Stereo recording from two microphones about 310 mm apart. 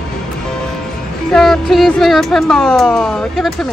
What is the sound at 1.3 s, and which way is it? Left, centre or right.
Speech, centre.